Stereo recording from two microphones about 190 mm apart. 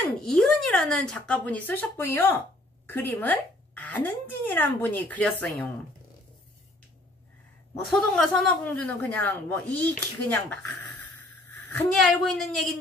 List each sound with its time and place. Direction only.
0.0 s speech: 5° left (ahead or behind)
7.8 s speech: 5° left (ahead or behind)
11.9 s speech: centre (ahead or behind)